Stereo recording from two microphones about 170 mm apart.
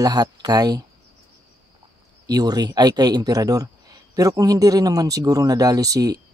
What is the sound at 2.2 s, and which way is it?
Speech, 25° right (ahead or behind).